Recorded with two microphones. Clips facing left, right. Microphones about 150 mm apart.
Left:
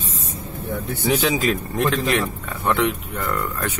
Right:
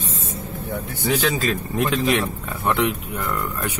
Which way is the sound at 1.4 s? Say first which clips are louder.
Left 1 dB; centre (ahead or behind).